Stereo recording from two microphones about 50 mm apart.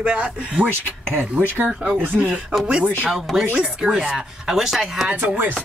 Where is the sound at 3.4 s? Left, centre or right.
Right.